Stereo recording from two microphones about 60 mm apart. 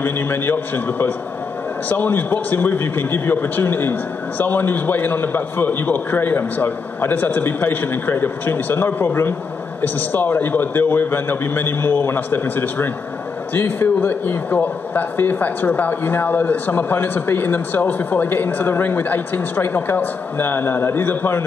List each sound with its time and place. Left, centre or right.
0.0 s speech: left